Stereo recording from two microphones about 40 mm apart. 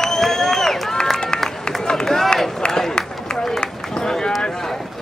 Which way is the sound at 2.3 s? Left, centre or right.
Centre.